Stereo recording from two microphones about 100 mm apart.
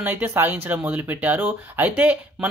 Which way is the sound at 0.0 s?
20° right (ahead or behind).